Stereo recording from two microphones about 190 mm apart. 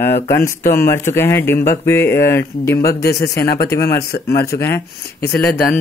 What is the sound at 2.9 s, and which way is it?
Speech, 60° left (ahead or behind).